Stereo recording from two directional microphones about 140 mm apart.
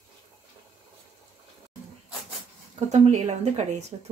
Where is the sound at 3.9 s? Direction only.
45° right (ahead or behind).